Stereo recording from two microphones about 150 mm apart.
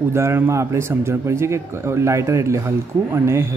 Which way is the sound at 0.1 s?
15° right (ahead or behind).